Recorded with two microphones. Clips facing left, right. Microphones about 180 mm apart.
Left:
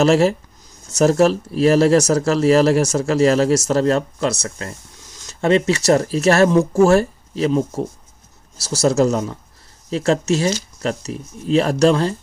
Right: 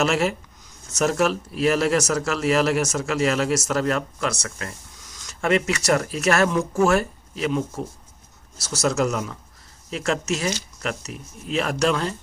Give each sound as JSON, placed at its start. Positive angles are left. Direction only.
{"t": 0.0, "sound": "speech", "side_deg": 35}